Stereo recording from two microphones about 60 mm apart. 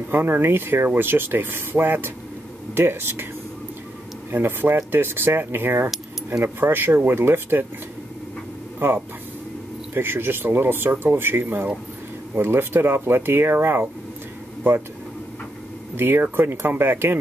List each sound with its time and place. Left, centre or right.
0.1 s speech: right
4.3 s speech: right
8.7 s speech: right
16.0 s speech: right